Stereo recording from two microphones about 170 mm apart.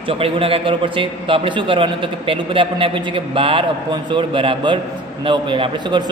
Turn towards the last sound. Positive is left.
turn(degrees=-30)  # may be behind; listen again after turning